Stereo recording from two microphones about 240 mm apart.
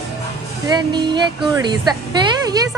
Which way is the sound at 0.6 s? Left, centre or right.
Centre.